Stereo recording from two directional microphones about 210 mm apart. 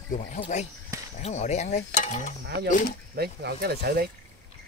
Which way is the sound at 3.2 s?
50° right (ahead or behind).